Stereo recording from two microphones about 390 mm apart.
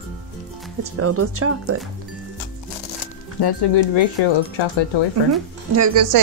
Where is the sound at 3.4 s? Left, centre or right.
Left.